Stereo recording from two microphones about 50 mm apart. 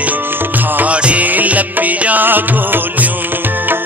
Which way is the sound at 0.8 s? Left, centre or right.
Right.